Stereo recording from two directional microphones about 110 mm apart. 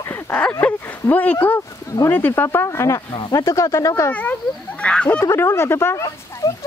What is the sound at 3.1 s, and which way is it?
Speech, 40° left (ahead or behind).